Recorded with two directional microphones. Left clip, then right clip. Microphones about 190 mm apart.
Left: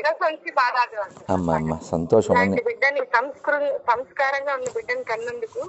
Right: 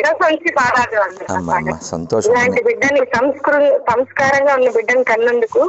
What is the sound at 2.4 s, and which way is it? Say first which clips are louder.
Speech: right 7 dB; 70° right (ahead or behind).